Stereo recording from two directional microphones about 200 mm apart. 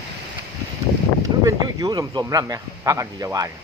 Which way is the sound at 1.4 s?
20° right (ahead or behind).